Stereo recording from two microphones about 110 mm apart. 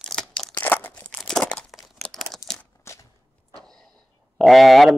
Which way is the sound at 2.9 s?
25° left (ahead or behind).